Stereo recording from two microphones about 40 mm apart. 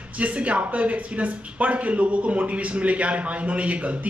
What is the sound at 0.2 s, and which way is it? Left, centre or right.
Speech, right.